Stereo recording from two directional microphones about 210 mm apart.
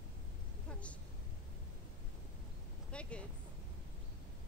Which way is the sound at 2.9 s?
5° left (ahead or behind).